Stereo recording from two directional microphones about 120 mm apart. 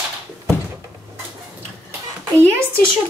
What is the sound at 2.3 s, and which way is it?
Speech, 25° right (ahead or behind).